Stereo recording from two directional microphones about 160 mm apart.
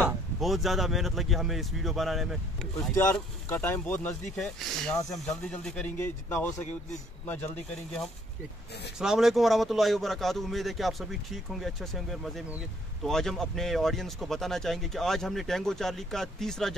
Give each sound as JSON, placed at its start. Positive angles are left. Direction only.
{"t": 0.4, "sound": "a man's voice", "side_deg": 0}
{"t": 2.9, "sound": "a man's voice", "side_deg": 15}